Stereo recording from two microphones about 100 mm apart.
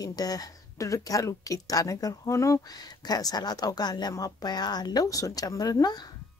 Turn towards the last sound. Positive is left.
turn(degrees=40)  # may be behind; listen again after turning